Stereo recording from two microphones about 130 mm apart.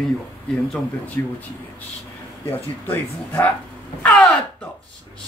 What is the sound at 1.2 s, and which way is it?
Speech, 15° left (ahead or behind).